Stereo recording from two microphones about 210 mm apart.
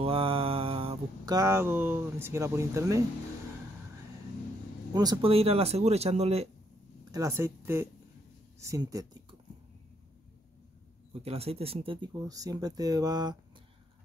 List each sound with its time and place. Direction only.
0.0 s mantra: 25° right (ahead or behind)
4.9 s speech: 20° right (ahead or behind)
7.1 s speech: 15° right (ahead or behind)
11.2 s speech: 30° right (ahead or behind)